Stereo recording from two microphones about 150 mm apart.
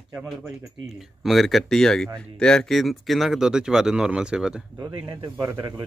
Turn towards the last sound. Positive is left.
turn(degrees=-20)  # may be behind; listen again after turning